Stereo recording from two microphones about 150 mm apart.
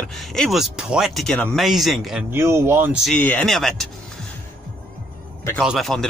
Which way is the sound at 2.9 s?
Centre (ahead or behind).